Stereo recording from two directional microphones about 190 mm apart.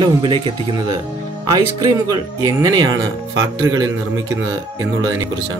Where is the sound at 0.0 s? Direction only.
25° right (ahead or behind).